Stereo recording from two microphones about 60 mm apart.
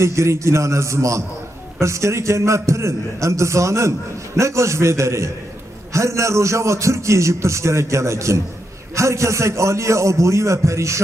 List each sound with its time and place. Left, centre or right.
0.0 s a man's voice: right